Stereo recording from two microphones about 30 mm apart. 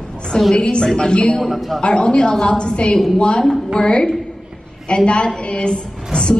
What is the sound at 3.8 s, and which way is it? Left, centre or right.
A woman's voice, left.